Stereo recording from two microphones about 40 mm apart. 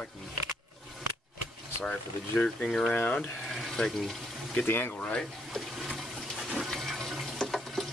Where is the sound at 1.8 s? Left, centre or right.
Left.